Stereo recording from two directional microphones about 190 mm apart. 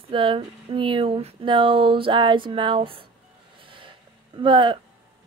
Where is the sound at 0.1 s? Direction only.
25° right (ahead or behind).